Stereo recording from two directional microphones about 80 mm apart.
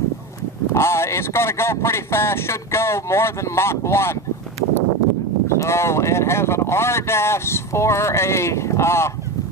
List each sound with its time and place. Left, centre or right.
0.7 s speech: left
5.6 s speech: left